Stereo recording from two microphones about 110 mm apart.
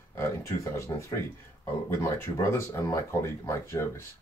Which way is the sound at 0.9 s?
30° left (ahead or behind).